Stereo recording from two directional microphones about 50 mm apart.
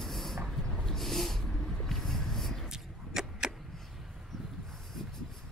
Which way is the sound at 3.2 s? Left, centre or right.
Centre.